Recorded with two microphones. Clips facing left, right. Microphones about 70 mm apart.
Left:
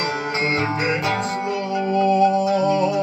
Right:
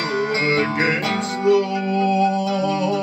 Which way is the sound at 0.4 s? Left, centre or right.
Right.